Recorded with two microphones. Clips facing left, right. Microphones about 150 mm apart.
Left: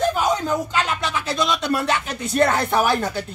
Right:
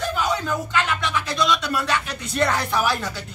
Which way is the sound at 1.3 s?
50° left (ahead or behind).